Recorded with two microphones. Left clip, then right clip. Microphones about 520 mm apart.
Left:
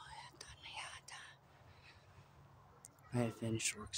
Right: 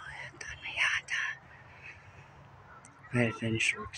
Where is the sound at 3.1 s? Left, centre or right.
Left.